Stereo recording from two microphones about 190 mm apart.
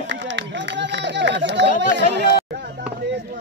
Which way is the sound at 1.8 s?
65° right (ahead or behind).